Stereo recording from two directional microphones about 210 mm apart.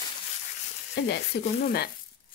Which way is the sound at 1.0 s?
55° left (ahead or behind).